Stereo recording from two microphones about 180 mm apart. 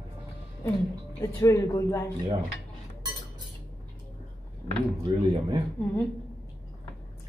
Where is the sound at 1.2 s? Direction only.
15° left (ahead or behind).